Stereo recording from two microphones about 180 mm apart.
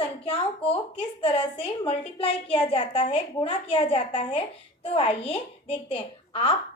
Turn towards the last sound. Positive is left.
turn(degrees=30)  # may be behind; listen again after turning